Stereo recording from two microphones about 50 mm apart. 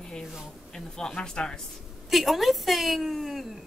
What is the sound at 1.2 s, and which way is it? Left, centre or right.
Speech, centre.